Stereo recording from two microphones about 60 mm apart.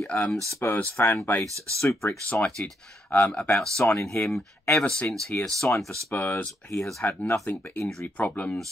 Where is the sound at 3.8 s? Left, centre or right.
Left.